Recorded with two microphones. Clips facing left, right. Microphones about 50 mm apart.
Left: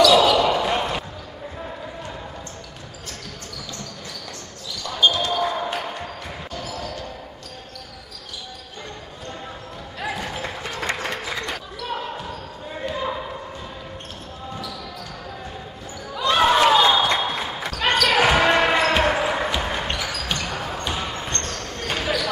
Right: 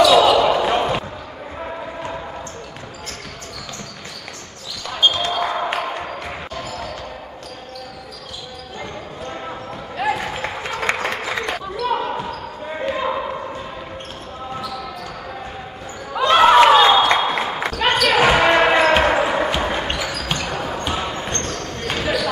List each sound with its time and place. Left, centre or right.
0.0 s basketball bounce: centre
4.8 s basketball bounce: right
10.0 s run: right
11.0 s a sound: right
12.8 s basketball bounce: right
16.1 s a sound: right
18.0 s basketball bounce: centre